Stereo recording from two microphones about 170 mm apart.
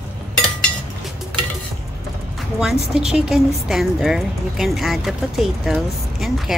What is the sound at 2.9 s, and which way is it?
Speech, 5° right (ahead or behind).